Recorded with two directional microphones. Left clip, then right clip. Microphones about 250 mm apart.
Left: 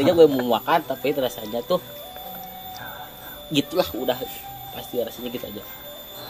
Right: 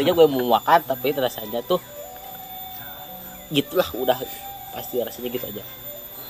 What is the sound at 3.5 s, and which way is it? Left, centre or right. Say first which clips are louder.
A man's voice: right 1 dB; centre.